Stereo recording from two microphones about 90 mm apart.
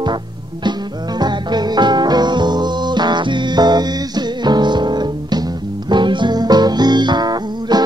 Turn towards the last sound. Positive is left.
turn(degrees=-50)  # may be behind; listen again after turning